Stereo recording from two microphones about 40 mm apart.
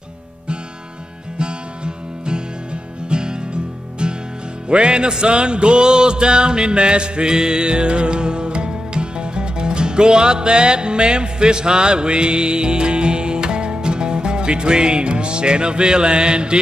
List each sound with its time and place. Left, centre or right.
1.4 s music: right